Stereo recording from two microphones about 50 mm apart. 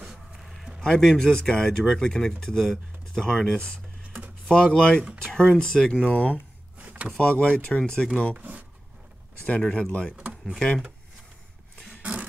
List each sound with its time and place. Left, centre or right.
0.4 s a sound: centre
0.8 s speech: centre
6.0 s speech: left
6.3 s drawer open or close: right
7.2 s speech: left
8.4 s a sound: right
9.5 s speech: left
11.9 s dog: right